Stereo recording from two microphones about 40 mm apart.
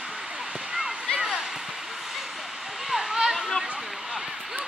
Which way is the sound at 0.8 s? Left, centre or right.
Centre.